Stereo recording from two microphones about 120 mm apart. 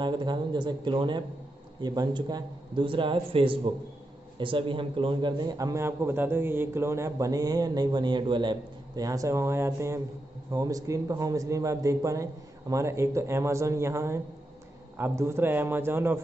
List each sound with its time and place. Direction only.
0.0 s a man's voice: 40° right (ahead or behind); by 16.2 s 20° right (ahead or behind)